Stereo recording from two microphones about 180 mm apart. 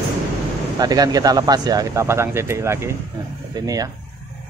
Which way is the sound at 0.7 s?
20° right (ahead or behind).